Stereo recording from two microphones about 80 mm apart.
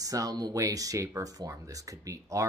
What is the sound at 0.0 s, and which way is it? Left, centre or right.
Speech, right.